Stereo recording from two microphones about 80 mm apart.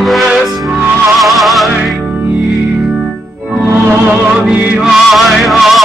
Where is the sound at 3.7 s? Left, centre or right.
Right.